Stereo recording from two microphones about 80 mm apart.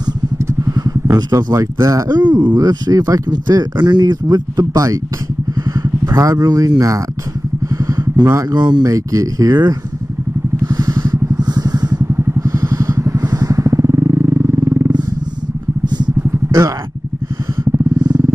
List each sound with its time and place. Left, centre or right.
0.4 s vehicle: right
2.0 s speech: right
5.6 s vehicle: right
7.7 s vehicle: right
8.4 s speech: right
8.9 s speech: right
10.6 s vehicle: right
12.1 s vehicle: right
14.9 s a sound: right
15.8 s vehicle: right
17.9 s vehicle: right